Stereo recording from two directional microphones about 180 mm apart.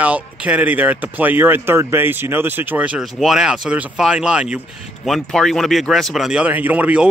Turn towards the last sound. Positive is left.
turn(degrees=-10)  # may be behind; listen again after turning